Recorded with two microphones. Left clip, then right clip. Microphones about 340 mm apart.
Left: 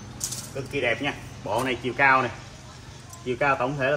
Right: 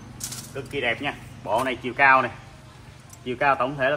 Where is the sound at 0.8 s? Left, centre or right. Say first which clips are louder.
Even; centre.